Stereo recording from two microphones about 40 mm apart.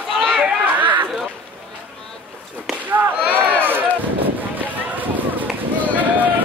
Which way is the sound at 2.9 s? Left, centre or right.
Right.